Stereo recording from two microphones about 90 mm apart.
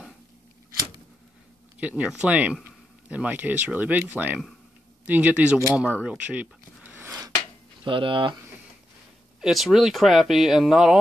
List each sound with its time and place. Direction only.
1.8 s speech: 15° right (ahead or behind)
6.0 s a sound: 15° right (ahead or behind)
7.8 s speech: 70° right (ahead or behind)
9.4 s speech: centre (ahead or behind)